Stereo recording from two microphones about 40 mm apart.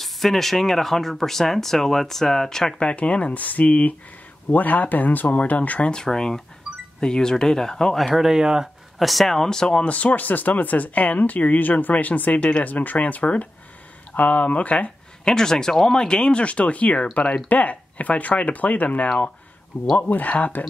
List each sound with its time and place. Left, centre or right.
0.0 s speech: centre
2.8 s speech: left
3.3 s speech: left
5.9 s speech: centre
8.1 s speech: centre
8.9 s speech: centre
9.3 s speech: centre
9.8 s speech: left
15.2 s speech: centre
17.5 s speech: left
20.0 s speech: left